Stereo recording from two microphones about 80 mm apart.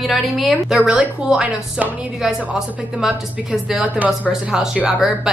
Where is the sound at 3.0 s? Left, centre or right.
Centre.